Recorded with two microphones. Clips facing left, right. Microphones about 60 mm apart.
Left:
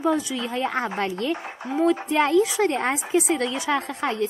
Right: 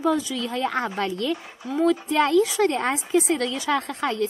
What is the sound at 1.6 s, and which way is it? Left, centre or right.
Speech, left.